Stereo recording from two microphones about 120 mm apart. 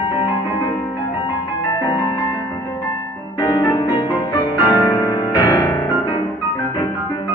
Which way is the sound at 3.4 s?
30° left (ahead or behind).